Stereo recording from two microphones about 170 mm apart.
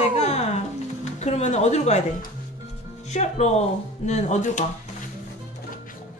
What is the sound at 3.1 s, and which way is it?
Speech, 40° left (ahead or behind).